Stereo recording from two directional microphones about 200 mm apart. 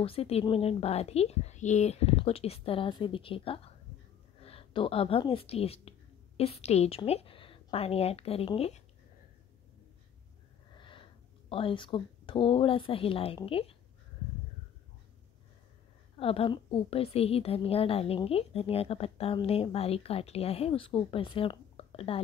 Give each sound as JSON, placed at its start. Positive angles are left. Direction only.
{"t": 0.0, "sound": "a woman's voice", "side_deg": 30}
{"t": 10.8, "sound": "a woman's voice", "side_deg": 25}
{"t": 16.2, "sound": "a woman's voice", "side_deg": 30}